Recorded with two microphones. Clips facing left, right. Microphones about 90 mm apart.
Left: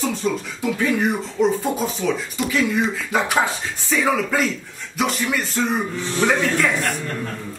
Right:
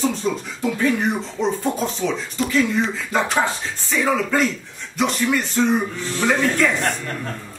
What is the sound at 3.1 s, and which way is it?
Speech, 5° left (ahead or behind).